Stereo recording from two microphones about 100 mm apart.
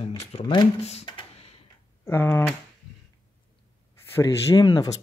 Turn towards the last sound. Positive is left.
turn(degrees=40)  # may be behind; listen again after turning